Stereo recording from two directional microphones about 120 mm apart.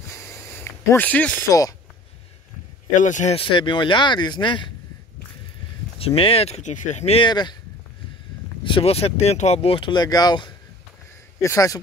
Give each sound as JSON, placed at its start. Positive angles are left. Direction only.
{"t": 0.1, "sound": "a sound", "side_deg": 20}
{"t": 1.5, "sound": "speech", "side_deg": 30}
{"t": 2.9, "sound": "speech", "side_deg": 90}
{"t": 3.3, "sound": "speech", "side_deg": 45}
{"t": 5.9, "sound": "speech", "side_deg": 50}
{"t": 7.2, "sound": "speech", "side_deg": 40}
{"t": 8.6, "sound": "speech", "side_deg": 50}